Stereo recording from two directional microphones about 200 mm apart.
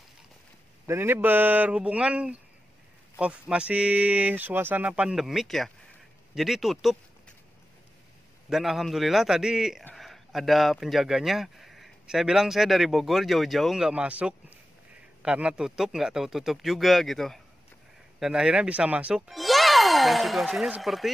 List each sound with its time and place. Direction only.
0.8 s speech: 10° right (ahead or behind)
8.5 s speech: centre (ahead or behind)